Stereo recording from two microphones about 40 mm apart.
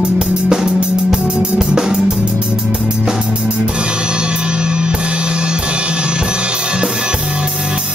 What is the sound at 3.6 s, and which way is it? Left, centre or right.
Drum kit, right.